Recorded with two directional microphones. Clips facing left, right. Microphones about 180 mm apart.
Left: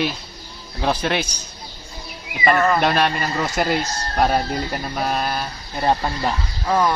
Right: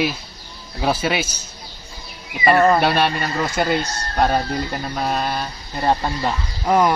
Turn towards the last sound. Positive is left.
turn(degrees=-15)  # may be behind; listen again after turning